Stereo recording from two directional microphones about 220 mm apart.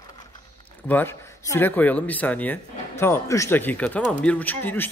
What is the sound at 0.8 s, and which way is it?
A man's voice, 10° left (ahead or behind).